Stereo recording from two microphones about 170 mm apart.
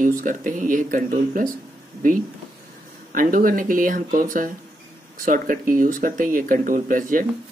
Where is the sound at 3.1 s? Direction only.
55° right (ahead or behind).